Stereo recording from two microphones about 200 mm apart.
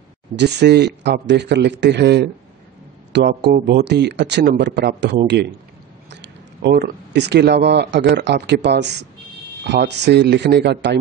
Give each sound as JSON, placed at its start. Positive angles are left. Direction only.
{"t": 0.4, "sound": "speech", "side_deg": -55}